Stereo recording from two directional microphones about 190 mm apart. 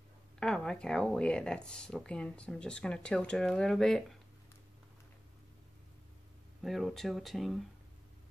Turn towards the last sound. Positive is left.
turn(degrees=0)  # may be behind; listen again after turning